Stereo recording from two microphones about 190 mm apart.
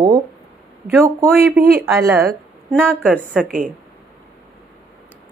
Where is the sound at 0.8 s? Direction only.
10° right (ahead or behind).